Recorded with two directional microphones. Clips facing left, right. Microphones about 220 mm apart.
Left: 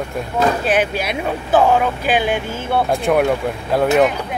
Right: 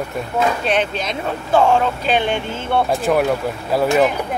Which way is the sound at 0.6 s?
10° left (ahead or behind).